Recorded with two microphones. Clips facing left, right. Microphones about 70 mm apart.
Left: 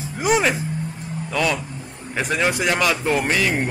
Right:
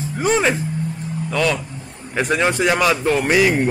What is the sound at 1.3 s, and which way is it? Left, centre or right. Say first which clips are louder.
A child's voice: right 2 dB; centre.